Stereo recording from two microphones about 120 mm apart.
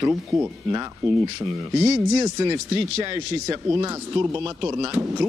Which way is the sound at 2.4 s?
35° right (ahead or behind).